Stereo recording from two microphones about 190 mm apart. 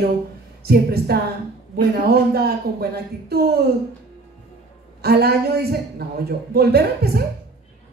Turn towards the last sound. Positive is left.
turn(degrees=-55)  # may be behind; listen again after turning